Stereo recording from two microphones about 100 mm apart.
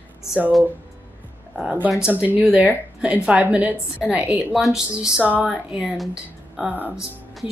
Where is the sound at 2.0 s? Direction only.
10° right (ahead or behind).